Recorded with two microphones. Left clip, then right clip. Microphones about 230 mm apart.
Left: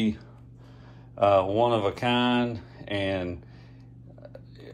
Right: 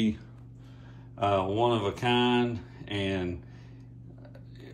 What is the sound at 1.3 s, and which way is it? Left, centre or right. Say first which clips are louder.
Speech: left 4 dB; left.